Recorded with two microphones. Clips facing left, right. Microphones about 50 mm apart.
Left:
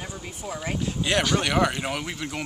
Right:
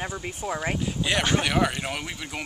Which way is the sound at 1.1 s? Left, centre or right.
Centre.